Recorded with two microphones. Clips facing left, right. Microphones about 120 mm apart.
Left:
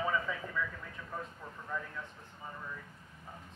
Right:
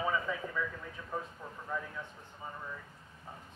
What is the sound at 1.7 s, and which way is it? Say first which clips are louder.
Speech: right 1 dB; 5° right (ahead or behind).